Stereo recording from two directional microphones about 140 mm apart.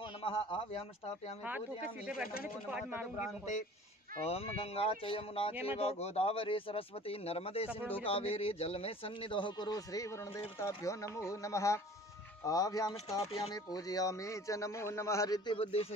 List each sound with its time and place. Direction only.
0.2 s speech: 40° left (ahead or behind)
2.7 s speech: 10° right (ahead or behind)
4.3 s a man's voice: 45° left (ahead or behind); by 13.2 s 25° left (ahead or behind)
13.2 s speech: 45° left (ahead or behind)
13.7 s a man's voice: 25° left (ahead or behind)
15.5 s speech: 45° left (ahead or behind)